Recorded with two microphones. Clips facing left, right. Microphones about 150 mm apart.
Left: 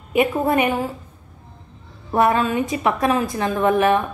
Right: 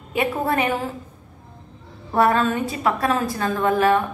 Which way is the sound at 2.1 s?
15° left (ahead or behind).